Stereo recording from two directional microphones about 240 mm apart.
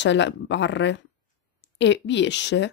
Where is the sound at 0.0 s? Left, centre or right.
Left.